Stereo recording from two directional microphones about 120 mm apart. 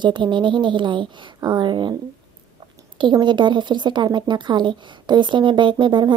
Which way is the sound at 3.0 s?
40° right (ahead or behind).